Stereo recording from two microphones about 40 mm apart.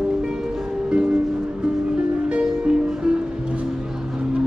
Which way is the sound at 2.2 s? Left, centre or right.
Right.